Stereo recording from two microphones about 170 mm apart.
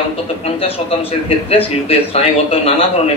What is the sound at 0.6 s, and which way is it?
A man's voice, 35° left (ahead or behind).